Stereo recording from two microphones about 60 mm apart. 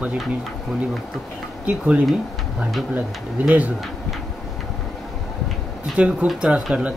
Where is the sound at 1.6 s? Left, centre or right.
Centre.